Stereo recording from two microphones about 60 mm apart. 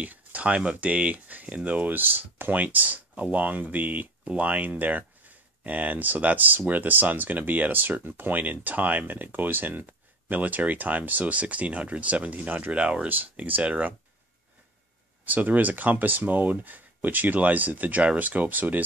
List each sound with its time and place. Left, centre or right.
0.0 s speech: right
13.1 s speech: right
15.2 s speech: right